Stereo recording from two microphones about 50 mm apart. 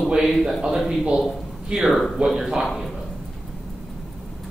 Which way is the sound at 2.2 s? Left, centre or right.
Centre.